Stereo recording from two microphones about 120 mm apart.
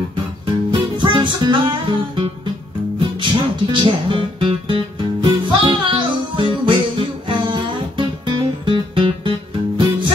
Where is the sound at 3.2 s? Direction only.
45° right (ahead or behind).